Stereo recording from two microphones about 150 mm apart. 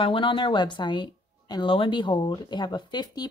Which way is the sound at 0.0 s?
35° left (ahead or behind).